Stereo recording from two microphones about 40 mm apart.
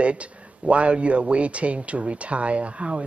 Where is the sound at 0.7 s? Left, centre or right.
Right.